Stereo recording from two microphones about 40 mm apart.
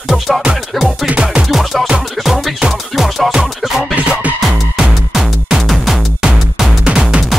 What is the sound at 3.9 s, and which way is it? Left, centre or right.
Music, right.